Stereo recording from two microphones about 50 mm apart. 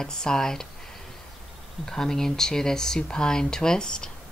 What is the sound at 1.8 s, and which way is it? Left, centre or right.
Speech, centre.